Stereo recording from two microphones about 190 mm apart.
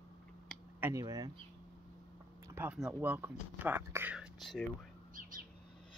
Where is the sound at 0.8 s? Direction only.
15° right (ahead or behind).